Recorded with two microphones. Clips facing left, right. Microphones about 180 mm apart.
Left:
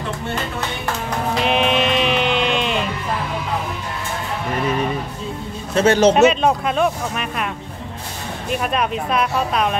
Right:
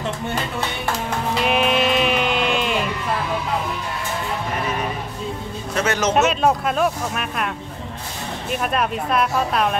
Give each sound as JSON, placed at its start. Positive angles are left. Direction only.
{"t": 1.4, "sound": "music", "side_deg": -5}
{"t": 5.8, "sound": "speech", "side_deg": 30}
{"t": 6.1, "sound": "speech", "side_deg": 0}
{"t": 8.5, "sound": "speech", "side_deg": 0}